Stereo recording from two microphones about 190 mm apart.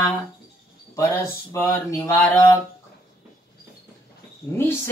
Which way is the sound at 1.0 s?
15° left (ahead or behind).